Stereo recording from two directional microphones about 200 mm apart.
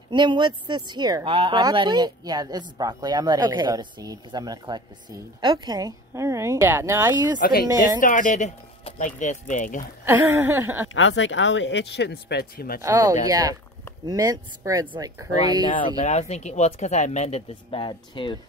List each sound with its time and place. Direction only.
0.1 s speech: 25° right (ahead or behind)
7.3 s speech: 45° left (ahead or behind)
10.0 s speech: 10° right (ahead or behind)
10.9 s speech: 70° left (ahead or behind); by 12.8 s 50° left (ahead or behind)
12.8 s speech: 20° right (ahead or behind)
16.0 s speech: 35° left (ahead or behind)